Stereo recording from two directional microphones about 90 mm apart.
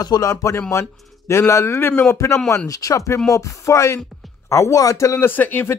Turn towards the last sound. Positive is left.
turn(degrees=20)  # may be behind; listen again after turning